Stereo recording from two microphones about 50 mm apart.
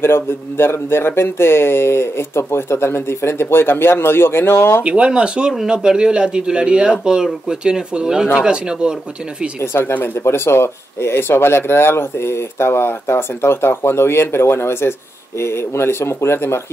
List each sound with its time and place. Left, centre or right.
0.0 s speech: left
4.8 s speech: right
9.6 s speech: left